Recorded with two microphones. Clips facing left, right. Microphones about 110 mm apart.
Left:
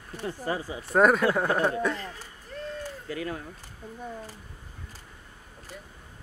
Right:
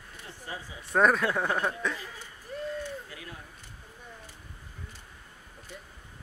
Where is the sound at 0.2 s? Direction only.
90° left.